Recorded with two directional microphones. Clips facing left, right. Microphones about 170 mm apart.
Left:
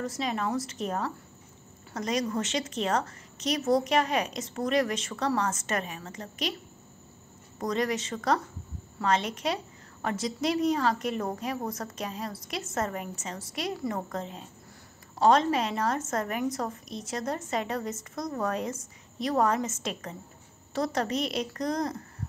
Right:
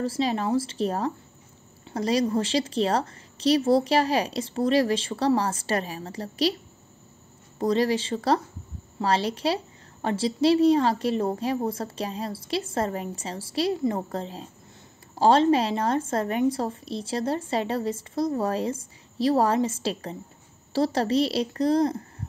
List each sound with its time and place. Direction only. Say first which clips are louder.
0.0 s a woman's voice: right 5 dB; 30° right (ahead or behind)
7.5 s a woman's voice: right 6 dB; 30° right (ahead or behind)